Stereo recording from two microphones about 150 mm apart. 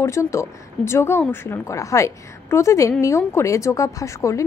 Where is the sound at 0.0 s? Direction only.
20° left (ahead or behind).